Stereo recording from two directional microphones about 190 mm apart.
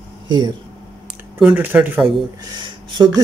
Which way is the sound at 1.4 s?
5° right (ahead or behind).